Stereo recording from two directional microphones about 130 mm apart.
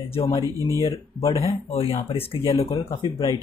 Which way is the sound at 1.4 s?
50° left (ahead or behind).